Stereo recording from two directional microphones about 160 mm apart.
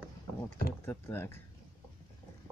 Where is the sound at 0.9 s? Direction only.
15° left (ahead or behind).